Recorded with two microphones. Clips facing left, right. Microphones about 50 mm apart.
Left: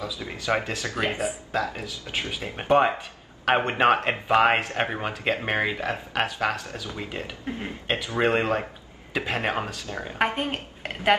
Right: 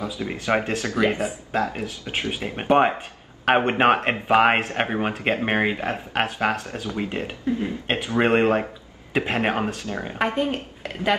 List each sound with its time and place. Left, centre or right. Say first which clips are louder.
0.0 s speech: right 4 dB; right
2.5 s speech: right 2 dB; right
4.6 s speech: right 3 dB; right
10.1 s speech: right 2 dB; left